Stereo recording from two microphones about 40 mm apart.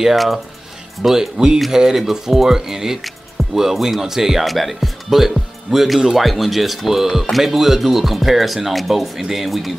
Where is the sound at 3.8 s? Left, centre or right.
Centre.